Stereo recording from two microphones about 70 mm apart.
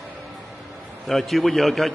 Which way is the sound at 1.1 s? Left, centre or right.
Centre.